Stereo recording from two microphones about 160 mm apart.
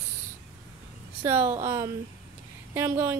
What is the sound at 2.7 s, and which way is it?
Speech, 15° right (ahead or behind).